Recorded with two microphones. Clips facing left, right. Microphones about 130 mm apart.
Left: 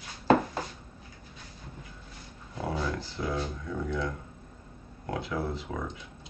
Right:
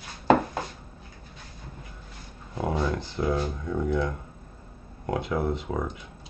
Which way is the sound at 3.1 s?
50° right (ahead or behind).